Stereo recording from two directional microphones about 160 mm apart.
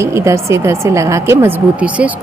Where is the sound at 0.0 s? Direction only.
15° right (ahead or behind).